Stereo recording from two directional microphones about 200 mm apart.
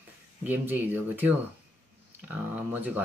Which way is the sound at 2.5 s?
10° right (ahead or behind).